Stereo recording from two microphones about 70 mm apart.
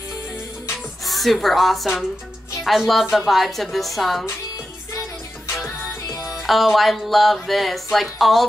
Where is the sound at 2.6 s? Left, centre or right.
Centre.